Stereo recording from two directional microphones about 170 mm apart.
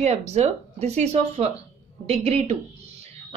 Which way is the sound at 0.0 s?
40° right (ahead or behind).